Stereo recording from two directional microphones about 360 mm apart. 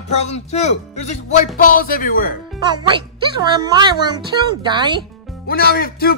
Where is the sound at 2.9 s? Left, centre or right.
Centre.